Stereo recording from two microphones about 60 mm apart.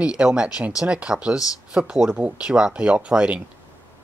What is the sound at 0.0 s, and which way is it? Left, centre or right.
Speech, centre.